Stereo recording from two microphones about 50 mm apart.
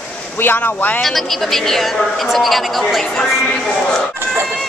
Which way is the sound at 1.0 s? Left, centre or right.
Centre.